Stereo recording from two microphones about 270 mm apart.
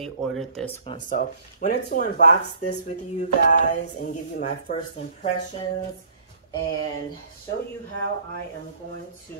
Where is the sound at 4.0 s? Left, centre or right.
Left.